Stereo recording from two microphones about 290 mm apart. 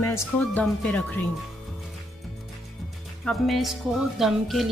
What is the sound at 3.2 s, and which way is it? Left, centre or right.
Speech, centre.